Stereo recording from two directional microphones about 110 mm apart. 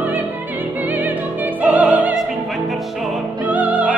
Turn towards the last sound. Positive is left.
turn(degrees=-15)  # may be behind; listen again after turning